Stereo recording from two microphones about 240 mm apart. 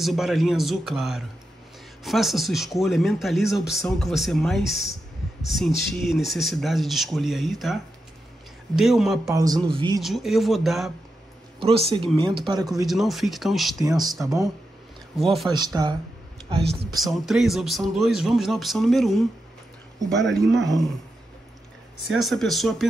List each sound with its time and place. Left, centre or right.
0.0 s speech: centre
9.3 s speech: centre
9.9 s speech: centre
11.6 s speech: right
12.8 s speech: centre
13.7 s speech: centre
15.1 s speech: centre
15.5 s speech: centre
16.9 s speech: centre
20.3 s speech: centre
22.0 s speech: centre